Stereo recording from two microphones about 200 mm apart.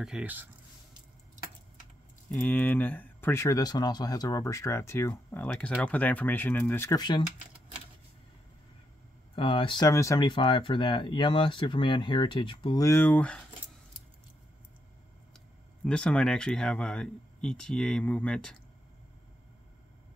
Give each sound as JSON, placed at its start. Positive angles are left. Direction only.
{"t": 0.0, "sound": "speech", "side_deg": -5}
{"t": 2.3, "sound": "speech", "side_deg": 10}
{"t": 9.3, "sound": "speech", "side_deg": 25}
{"t": 15.8, "sound": "speech", "side_deg": 5}